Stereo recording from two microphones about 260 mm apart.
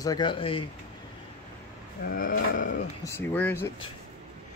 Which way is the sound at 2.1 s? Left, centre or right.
Left.